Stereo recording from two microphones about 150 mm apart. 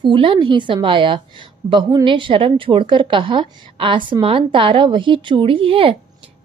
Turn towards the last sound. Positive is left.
turn(degrees=-35)  # may be behind; listen again after turning